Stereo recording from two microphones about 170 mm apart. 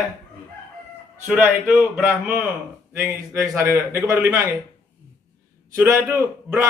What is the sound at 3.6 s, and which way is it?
Speech, 15° right (ahead or behind).